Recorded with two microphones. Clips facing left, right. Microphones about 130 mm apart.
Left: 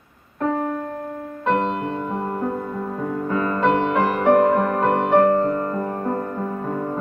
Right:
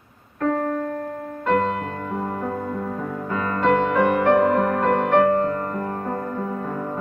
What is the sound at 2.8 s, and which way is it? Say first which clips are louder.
Music: left 3 dB; 15° left (ahead or behind).